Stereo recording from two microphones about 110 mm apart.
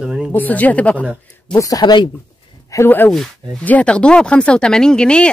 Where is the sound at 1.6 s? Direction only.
35° left (ahead or behind).